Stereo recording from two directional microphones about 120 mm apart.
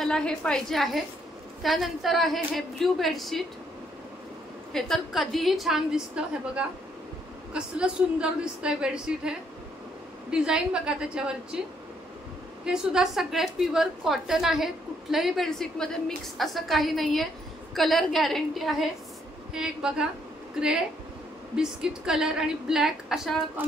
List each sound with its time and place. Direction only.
0.0 s a woman's voice: 5° left (ahead or behind)
4.7 s a woman's voice: 5° left (ahead or behind)
7.5 s a woman's voice: 10° right (ahead or behind)
10.3 s a woman's voice: 5° right (ahead or behind)
12.6 s a woman's voice: 5° right (ahead or behind)
21.5 s a woman's voice: 5° right (ahead or behind)